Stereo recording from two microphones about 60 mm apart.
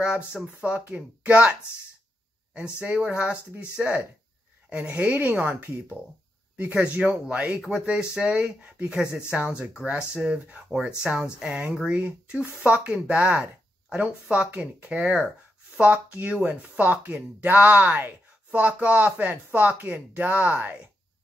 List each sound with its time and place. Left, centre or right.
0.6 s speech: right
2.5 s speech: centre
11.9 s speech: right